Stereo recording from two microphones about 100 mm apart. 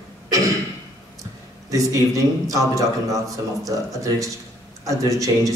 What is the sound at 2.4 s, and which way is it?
Speech, 35° right (ahead or behind).